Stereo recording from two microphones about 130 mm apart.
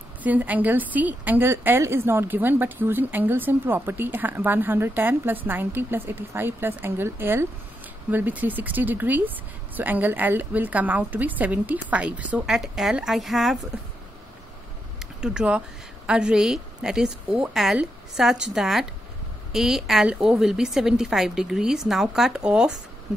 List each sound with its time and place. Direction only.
0.2 s a woman's voice: 10° right (ahead or behind)
15.1 s a woman's voice: 5° right (ahead or behind)